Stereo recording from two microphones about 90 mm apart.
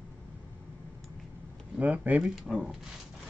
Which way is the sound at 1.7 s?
20° right (ahead or behind).